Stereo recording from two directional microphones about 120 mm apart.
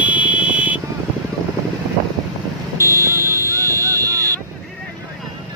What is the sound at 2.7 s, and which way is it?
Vehicle, 25° right (ahead or behind).